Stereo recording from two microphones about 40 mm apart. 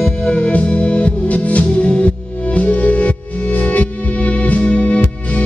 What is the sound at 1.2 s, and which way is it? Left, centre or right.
Music, left.